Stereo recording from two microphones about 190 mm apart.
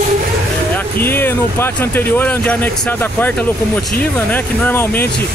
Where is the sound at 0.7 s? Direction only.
10° left (ahead or behind).